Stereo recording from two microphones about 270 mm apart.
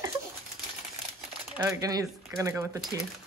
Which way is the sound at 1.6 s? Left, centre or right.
Centre.